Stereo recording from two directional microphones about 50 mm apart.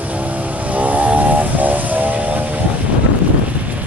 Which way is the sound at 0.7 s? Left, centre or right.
Right.